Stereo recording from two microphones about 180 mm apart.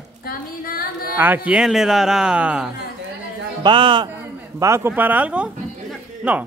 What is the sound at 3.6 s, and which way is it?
Speech, 25° right (ahead or behind).